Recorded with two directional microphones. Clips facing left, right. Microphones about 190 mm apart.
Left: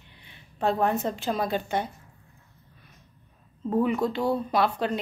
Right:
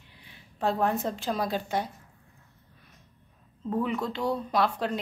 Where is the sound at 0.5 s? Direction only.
Centre (ahead or behind).